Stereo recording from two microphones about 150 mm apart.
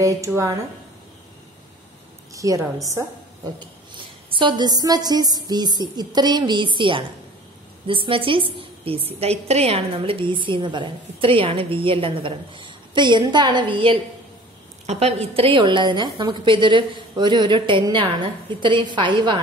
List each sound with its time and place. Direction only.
0.0 s a woman's voice: 20° right (ahead or behind)
2.3 s a woman's voice: 20° right (ahead or behind)